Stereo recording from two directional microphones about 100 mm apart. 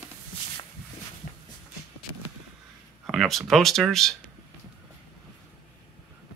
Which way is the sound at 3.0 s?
Centre (ahead or behind).